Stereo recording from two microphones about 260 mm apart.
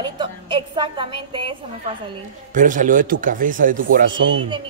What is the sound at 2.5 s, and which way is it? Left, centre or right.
A man's voice, right.